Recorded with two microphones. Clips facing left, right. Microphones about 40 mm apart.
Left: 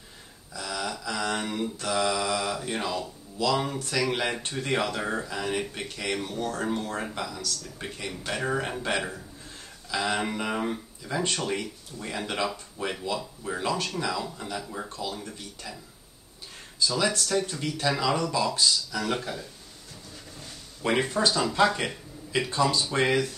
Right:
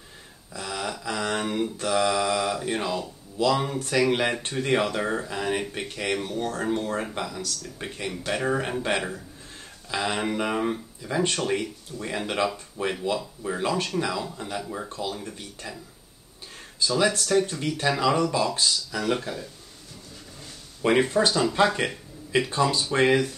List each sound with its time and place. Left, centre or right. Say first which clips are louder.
0.5 s a sound: right 1 dB; centre
2.0 s speech: right 3 dB; centre
9.9 s speech: right 1 dB; centre
16.8 s speech: right 3 dB; centre
20.8 s speech: right 4 dB; centre